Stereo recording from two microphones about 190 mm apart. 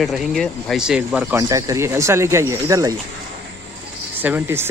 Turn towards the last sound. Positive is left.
turn(degrees=-10)  # may be behind; listen again after turning